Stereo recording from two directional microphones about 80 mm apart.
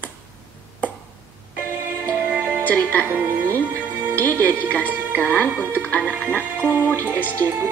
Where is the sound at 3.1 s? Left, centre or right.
Right.